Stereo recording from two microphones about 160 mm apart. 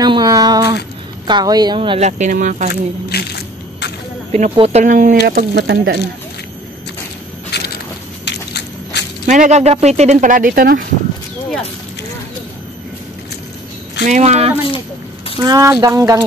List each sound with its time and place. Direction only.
0.0 s a sound: 25° right (ahead or behind)
1.2 s a woman's voice: 25° right (ahead or behind)
2.0 s speech: 45° right (ahead or behind)
2.7 s a sound: 85° left
4.3 s speech: 40° right (ahead or behind); by 5.9 s 85° right
7.5 s a sound: 90° left
9.2 s speech: 50° right (ahead or behind); by 10.8 s 70° right (ahead or behind)
14.0 s speech: 45° right (ahead or behind)
15.4 s a woman's voice: 20° right (ahead or behind)